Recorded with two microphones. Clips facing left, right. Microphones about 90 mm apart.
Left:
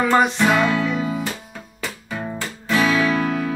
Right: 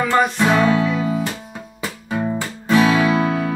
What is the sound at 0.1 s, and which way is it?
Music, 15° left (ahead or behind).